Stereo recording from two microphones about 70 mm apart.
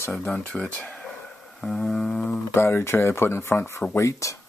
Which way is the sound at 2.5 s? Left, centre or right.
Left.